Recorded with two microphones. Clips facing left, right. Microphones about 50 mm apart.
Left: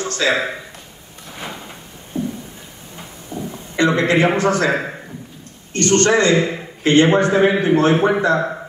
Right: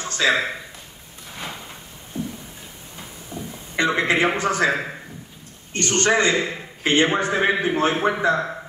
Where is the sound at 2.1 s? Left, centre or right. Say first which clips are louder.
Left 6 dB; left.